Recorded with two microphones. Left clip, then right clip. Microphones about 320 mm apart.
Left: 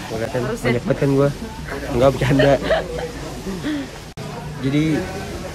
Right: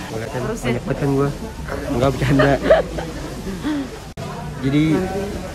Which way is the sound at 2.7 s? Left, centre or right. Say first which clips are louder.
Right 6 dB; centre.